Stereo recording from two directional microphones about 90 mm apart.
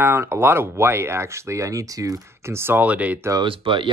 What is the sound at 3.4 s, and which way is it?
Speech, 75° right (ahead or behind).